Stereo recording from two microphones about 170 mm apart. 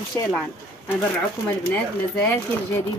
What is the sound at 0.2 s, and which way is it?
Speech, 15° left (ahead or behind).